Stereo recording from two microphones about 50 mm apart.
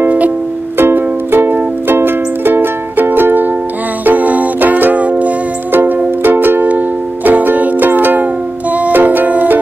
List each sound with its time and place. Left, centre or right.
0.7 s music: right